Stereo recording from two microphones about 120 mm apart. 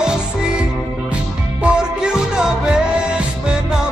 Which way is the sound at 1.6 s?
5° right (ahead or behind).